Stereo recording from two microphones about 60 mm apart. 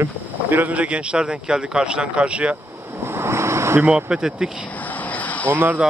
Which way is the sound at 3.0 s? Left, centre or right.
Right.